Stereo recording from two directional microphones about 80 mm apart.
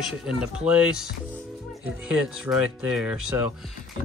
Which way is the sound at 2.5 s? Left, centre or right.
Centre.